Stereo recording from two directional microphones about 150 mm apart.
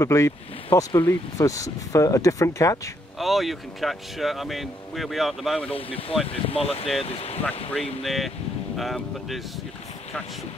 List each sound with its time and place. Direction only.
0.0 s speech: 20° left (ahead or behind)
3.2 s speech: centre (ahead or behind)
5.8 s speech: 40° left (ahead or behind)
8.0 s speech: centre (ahead or behind)